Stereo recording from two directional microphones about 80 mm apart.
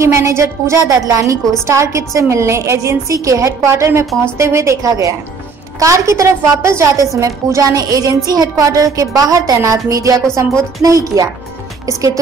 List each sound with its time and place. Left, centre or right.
0.0 s a woman's voice: right